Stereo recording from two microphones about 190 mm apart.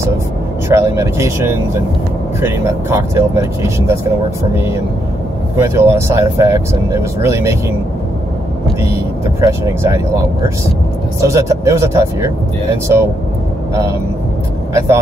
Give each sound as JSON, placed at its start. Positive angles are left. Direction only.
{"t": 0.7, "sound": "speech", "side_deg": -15}
{"t": 9.4, "sound": "speech", "side_deg": -15}
{"t": 11.2, "sound": "speech", "side_deg": -15}
{"t": 14.7, "sound": "speech", "side_deg": -15}